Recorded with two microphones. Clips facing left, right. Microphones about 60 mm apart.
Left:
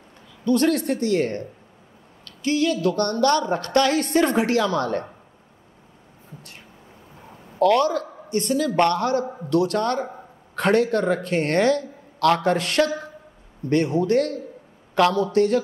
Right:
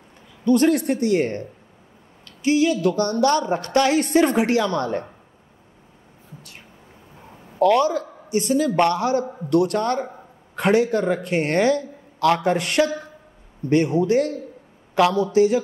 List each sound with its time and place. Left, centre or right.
0.5 s a woman's voice: centre
2.2 s a woman's voice: centre
7.5 s a man's voice: centre